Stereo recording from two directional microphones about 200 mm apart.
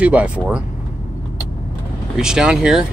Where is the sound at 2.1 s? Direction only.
5° right (ahead or behind).